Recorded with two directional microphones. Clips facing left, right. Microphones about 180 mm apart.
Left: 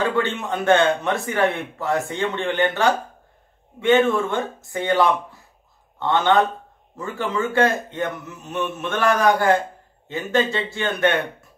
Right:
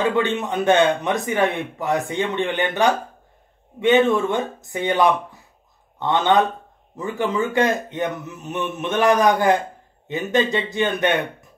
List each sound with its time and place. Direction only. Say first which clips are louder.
0.1 s a man's voice: right 2 dB; 20° right (ahead or behind)